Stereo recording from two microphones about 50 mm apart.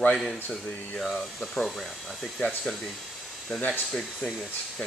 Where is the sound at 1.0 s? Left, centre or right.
Centre.